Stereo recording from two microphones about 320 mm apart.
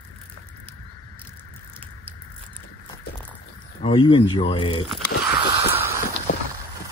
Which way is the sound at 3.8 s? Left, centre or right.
Centre.